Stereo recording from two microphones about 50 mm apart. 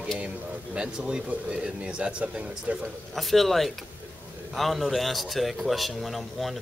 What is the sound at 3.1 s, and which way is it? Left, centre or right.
A man's voice, centre.